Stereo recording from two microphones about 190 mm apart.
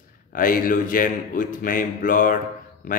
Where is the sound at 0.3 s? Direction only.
45° left (ahead or behind).